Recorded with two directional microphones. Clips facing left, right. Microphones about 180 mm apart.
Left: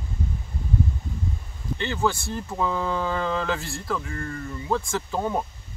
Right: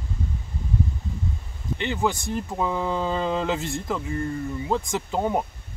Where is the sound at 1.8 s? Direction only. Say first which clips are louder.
Even; 15° right (ahead or behind).